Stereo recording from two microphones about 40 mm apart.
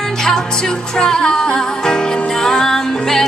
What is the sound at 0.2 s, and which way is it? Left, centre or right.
Music, centre.